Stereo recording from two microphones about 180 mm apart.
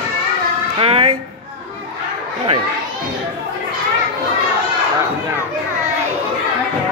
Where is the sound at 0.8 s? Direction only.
30° right (ahead or behind).